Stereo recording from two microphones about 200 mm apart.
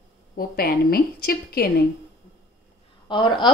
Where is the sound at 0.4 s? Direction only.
50° left (ahead or behind).